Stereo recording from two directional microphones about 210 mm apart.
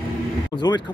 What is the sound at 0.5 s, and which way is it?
Speech, 20° left (ahead or behind).